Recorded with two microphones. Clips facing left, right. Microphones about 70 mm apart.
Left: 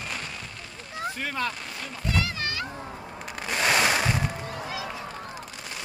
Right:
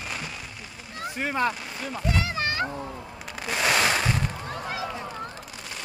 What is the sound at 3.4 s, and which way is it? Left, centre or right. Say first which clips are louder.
Fireworks: even; centre.